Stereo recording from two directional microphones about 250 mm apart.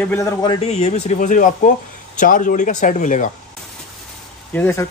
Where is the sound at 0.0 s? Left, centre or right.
Centre; by 3.3 s left.